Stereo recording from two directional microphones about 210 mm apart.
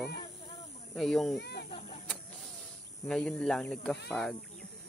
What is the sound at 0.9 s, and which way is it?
Speech, centre (ahead or behind).